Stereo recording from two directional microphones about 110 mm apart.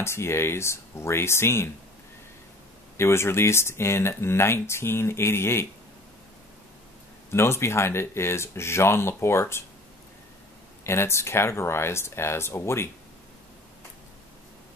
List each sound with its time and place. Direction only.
0.0 s speech: 25° left (ahead or behind)
3.0 s speech: 25° left (ahead or behind)
7.2 s speech: 25° left (ahead or behind)
10.8 s speech: 25° left (ahead or behind)